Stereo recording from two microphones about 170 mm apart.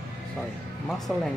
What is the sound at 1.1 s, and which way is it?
Speech, 5° left (ahead or behind).